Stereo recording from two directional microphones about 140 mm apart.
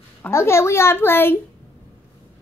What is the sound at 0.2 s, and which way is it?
A woman's voice, 20° left (ahead or behind).